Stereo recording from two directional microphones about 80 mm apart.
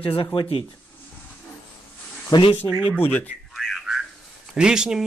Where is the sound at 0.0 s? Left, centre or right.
Left.